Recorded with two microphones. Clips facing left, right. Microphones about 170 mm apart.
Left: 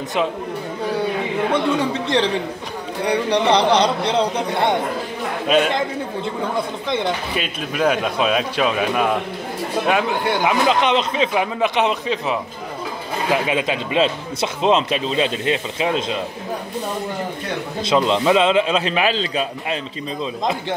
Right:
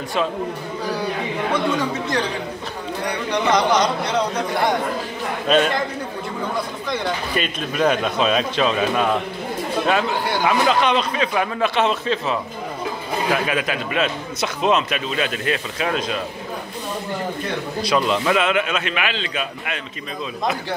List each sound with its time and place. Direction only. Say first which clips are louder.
1.8 s speech: left 3 dB; 30° left (ahead or behind)
3.3 s a man's voice: left 1 dB; 30° left (ahead or behind)
5.5 s a man's voice: even; 10° left (ahead or behind)
7.3 s a man's voice: right 1 dB; 5° left (ahead or behind)
13.5 s speech: left 2 dB; 25° left (ahead or behind)
17.8 s speech: left 3 dB; 25° left (ahead or behind)